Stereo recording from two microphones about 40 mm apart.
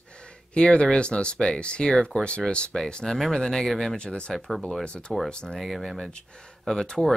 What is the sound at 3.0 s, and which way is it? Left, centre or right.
Speech, centre.